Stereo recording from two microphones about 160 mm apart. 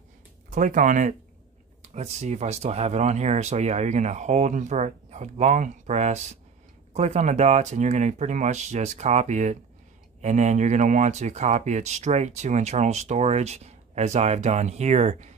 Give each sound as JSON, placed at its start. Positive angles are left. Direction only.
{"t": 0.5, "sound": "speech", "side_deg": -55}